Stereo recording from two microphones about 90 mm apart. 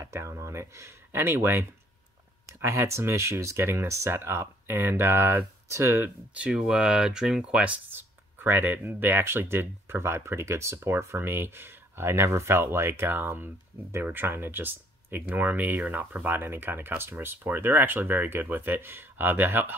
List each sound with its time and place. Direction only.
0.0 s speech: 30° right (ahead or behind)
6.3 s speech: 10° right (ahead or behind)